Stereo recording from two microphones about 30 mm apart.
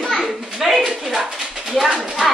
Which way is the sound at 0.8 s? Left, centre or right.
Right.